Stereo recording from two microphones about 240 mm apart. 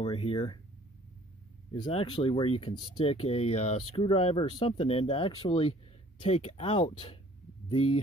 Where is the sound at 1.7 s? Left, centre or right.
Centre.